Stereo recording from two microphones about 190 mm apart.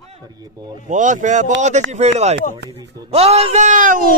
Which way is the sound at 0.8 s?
40° right (ahead or behind).